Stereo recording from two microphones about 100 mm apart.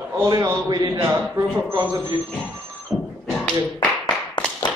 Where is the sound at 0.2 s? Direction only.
30° right (ahead or behind).